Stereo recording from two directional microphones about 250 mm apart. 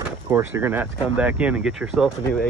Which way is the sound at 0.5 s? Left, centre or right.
Centre.